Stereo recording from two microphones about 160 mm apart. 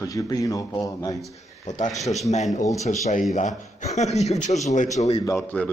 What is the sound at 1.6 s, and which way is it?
A man's voice, 50° left (ahead or behind).